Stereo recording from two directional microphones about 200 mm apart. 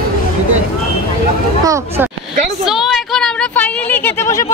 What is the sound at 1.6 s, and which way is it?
Speech, 15° right (ahead or behind).